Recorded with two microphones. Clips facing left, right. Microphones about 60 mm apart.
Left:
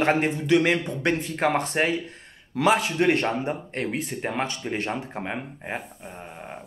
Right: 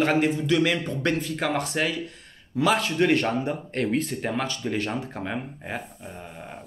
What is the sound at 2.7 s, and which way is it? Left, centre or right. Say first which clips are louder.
Speech: left 1 dB; left.